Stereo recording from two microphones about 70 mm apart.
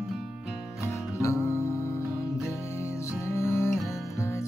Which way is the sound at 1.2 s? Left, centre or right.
Left.